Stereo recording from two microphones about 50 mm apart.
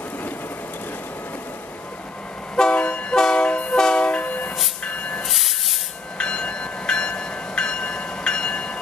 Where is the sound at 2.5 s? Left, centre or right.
Centre.